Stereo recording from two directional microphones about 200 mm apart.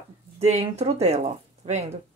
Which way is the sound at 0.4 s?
30° right (ahead or behind).